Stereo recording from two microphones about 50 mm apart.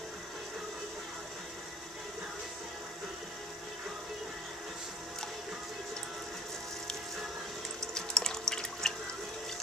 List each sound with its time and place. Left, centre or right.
7.9 s water: centre